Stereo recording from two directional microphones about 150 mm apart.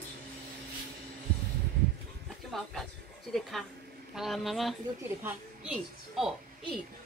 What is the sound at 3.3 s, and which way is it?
A child's voice, centre (ahead or behind).